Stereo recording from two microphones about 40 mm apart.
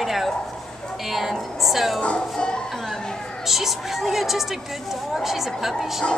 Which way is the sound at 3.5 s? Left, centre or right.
Centre.